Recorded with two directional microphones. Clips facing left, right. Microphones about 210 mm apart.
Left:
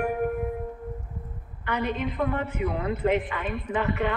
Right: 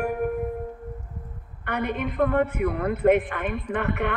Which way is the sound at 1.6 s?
55° right (ahead or behind).